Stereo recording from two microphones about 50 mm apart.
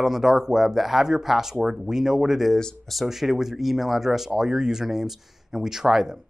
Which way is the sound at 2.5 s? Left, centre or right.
Centre.